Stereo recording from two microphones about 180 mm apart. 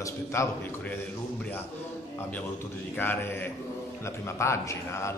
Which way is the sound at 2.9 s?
10° left (ahead or behind).